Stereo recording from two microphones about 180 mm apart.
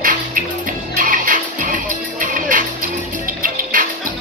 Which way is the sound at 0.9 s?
50° right (ahead or behind).